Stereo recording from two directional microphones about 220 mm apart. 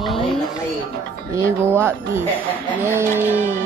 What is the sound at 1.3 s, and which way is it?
Speech, 10° right (ahead or behind).